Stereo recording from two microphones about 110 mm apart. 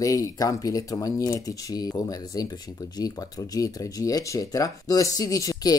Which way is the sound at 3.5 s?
30° left (ahead or behind).